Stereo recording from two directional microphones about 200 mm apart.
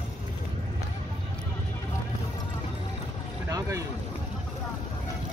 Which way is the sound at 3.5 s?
15° right (ahead or behind).